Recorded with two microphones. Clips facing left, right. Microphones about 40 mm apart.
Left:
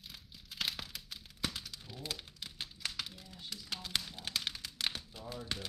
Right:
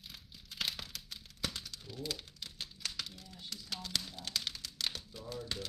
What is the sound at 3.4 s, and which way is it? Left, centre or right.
Speech, centre.